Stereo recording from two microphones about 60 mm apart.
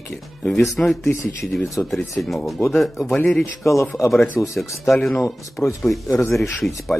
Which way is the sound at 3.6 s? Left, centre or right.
Left.